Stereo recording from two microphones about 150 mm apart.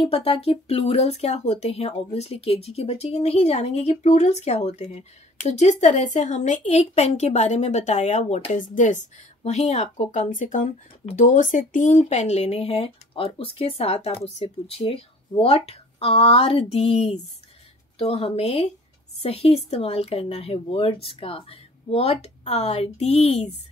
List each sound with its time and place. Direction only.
0.0 s speech: 40° left (ahead or behind)